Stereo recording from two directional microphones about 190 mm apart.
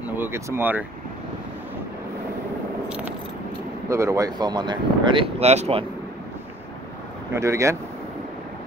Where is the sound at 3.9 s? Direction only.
15° right (ahead or behind); by 5.8 s 35° right (ahead or behind).